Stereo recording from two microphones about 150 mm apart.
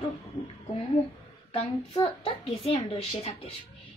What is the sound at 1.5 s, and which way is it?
A woman's voice, 40° left (ahead or behind).